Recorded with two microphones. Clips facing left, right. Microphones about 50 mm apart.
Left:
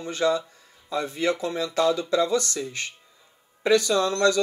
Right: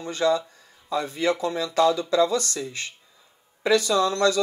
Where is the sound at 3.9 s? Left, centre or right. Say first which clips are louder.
Even; left.